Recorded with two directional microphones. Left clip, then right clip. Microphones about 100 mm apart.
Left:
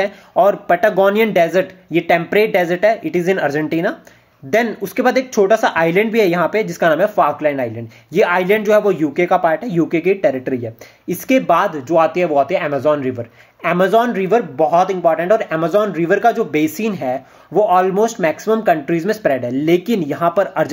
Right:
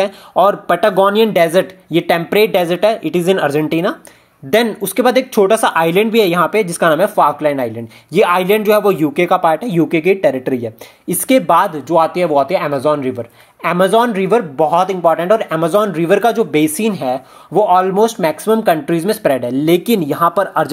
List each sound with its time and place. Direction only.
0.0 s speech: 35° right (ahead or behind)
10.3 s speech: 50° right (ahead or behind); by 20.7 s 25° right (ahead or behind)